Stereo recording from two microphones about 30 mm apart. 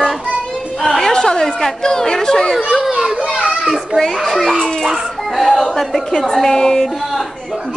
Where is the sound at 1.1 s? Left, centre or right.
Left.